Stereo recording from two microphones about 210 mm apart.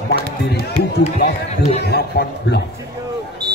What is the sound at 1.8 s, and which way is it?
Speech, 50° left (ahead or behind).